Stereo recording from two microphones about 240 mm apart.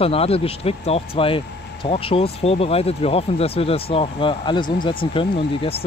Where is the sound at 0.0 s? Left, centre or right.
Left.